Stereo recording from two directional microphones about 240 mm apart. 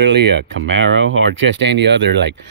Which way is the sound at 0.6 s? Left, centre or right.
Right.